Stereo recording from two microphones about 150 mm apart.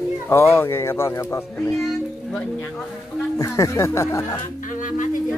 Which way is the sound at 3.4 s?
20° left (ahead or behind).